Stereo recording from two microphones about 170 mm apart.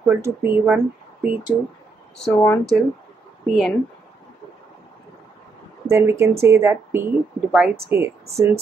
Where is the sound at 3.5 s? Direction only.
5° right (ahead or behind).